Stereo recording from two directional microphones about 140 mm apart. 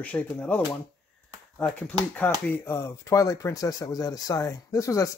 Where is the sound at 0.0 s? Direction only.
10° left (ahead or behind).